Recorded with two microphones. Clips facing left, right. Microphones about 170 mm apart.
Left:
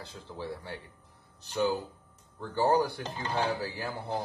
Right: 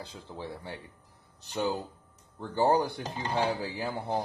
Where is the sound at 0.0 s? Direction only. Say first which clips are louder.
Even; 15° right (ahead or behind).